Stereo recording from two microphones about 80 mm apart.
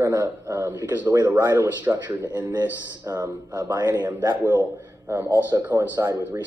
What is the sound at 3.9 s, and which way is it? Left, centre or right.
A man's voice, right.